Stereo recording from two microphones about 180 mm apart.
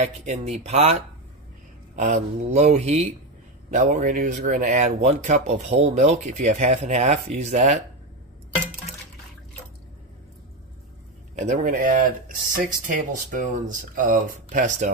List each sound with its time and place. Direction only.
0.0 s speech: 40° right (ahead or behind)
11.3 s speech: 45° right (ahead or behind)